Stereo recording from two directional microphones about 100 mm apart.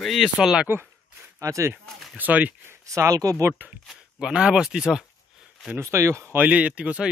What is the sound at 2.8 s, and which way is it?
Speech, 30° right (ahead or behind).